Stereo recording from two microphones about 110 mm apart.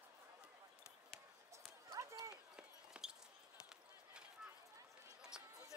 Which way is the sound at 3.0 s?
10° right (ahead or behind).